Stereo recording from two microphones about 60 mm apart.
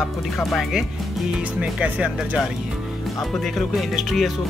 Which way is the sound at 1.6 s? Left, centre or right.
Right.